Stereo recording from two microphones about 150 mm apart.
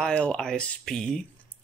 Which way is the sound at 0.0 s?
5° left (ahead or behind).